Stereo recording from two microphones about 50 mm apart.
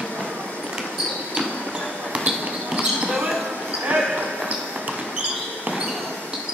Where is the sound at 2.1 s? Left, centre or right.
Centre.